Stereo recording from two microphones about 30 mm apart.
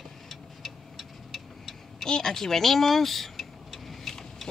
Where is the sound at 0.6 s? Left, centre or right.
Centre.